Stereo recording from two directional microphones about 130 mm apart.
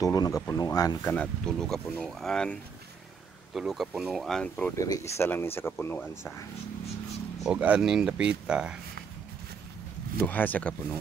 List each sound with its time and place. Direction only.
0.0 s speech: 30° left (ahead or behind)
1.1 s speech: 10° left (ahead or behind)
4.7 s speech: 30° left (ahead or behind)
7.4 s speech: 10° right (ahead or behind)
10.1 s speech: 15° left (ahead or behind)